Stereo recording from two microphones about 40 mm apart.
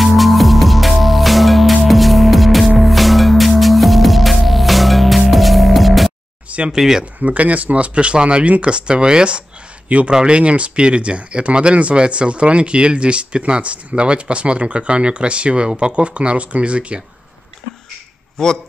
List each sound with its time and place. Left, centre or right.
0.0 s music: centre
6.7 s speech: centre
7.2 s speech: right
9.8 s speech: right
18.4 s speech: centre